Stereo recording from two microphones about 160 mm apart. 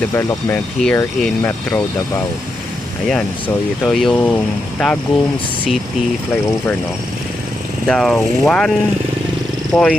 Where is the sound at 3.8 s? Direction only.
5° left (ahead or behind).